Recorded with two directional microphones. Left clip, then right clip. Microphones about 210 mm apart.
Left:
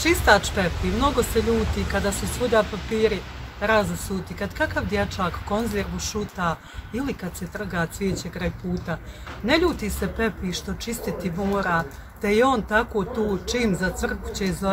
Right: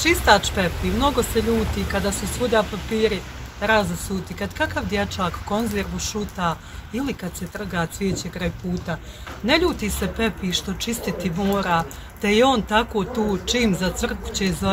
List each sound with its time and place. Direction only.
0.0 s speech: 10° left (ahead or behind)
4.4 s speech: 10° left (ahead or behind)